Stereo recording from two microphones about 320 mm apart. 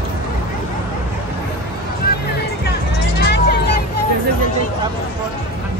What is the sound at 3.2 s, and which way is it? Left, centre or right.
Vehicle, left.